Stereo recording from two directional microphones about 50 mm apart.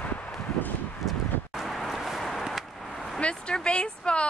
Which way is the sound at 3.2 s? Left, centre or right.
Left.